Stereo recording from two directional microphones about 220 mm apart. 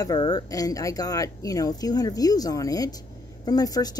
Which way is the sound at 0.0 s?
20° left (ahead or behind).